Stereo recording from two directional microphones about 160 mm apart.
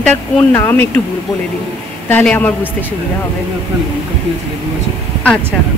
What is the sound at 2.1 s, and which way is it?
Speech, 10° left (ahead or behind).